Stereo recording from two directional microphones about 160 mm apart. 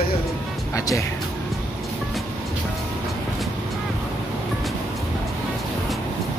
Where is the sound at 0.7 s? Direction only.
20° left (ahead or behind).